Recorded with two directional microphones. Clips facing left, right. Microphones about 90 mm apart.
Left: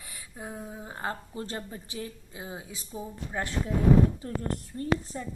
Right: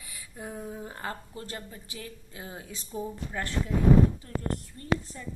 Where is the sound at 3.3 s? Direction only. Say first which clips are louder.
Left 1 dB; 20° left (ahead or behind).